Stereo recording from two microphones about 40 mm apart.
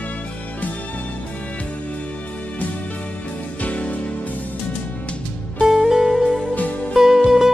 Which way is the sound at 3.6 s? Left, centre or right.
Left.